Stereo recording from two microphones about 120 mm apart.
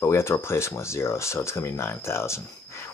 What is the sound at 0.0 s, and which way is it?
Speech, 20° left (ahead or behind).